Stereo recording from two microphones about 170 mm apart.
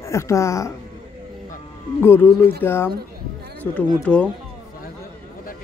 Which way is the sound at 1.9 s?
15° left (ahead or behind).